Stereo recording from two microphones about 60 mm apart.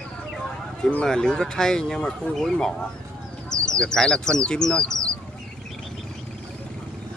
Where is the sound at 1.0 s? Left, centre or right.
Centre.